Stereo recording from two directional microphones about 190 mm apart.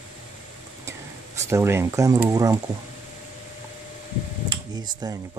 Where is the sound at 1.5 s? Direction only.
15° right (ahead or behind).